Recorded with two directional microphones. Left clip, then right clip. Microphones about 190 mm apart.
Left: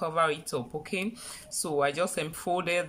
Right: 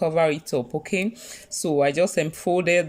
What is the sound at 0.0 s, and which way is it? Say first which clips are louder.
Speech: right 6 dB; 20° right (ahead or behind).